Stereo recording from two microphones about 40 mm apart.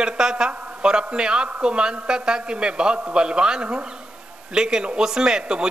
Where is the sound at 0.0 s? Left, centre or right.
Centre.